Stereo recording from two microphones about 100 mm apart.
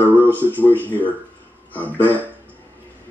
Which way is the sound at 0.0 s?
15° left (ahead or behind).